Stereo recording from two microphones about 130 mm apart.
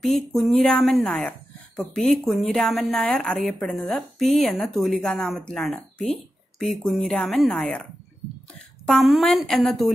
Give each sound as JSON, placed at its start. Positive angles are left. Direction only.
{"t": 0.0, "sound": "a woman's voice", "side_deg": 0}
{"t": 8.8, "sound": "a woman's voice", "side_deg": 0}